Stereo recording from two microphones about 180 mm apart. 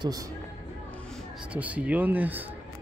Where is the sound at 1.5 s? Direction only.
10° right (ahead or behind).